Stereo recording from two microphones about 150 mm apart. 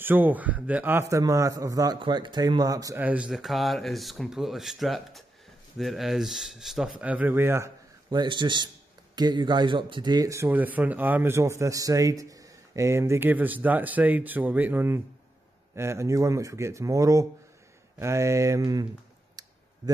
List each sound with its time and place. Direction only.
0.0 s speech: 10° right (ahead or behind)
3.0 s speech: 10° right (ahead or behind)
8.1 s a man's voice: 30° right (ahead or behind)
19.4 s clicking: 25° right (ahead or behind)